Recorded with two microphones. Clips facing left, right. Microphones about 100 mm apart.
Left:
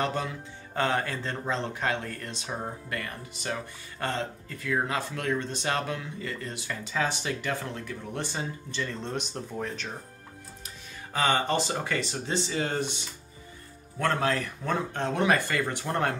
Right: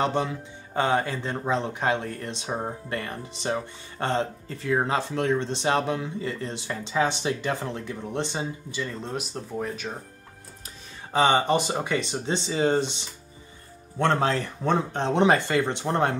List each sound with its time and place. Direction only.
0.0 s speech: 20° right (ahead or behind)
9.0 s speech: 5° right (ahead or behind)
11.1 s speech: 20° right (ahead or behind)